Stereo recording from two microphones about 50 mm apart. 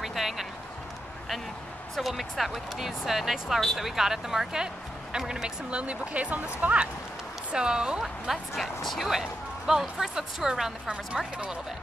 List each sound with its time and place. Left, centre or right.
0.0 s a sound: centre
2.0 s a woman's voice: centre
5.7 s a woman's voice: right